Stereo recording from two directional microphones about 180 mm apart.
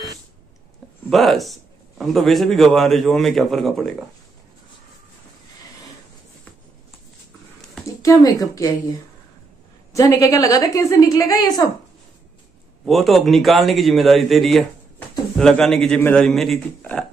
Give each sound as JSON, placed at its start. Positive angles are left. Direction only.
{"t": 1.1, "sound": "a man's voice", "side_deg": 0}
{"t": 7.8, "sound": "speech", "side_deg": 15}
{"t": 9.9, "sound": "a woman's voice", "side_deg": 20}
{"t": 12.8, "sound": "a man's voice", "side_deg": 0}